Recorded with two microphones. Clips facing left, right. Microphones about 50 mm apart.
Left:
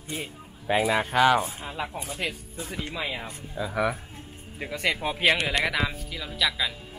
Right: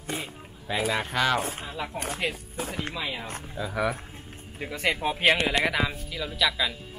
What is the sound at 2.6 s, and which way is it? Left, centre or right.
Speech, right.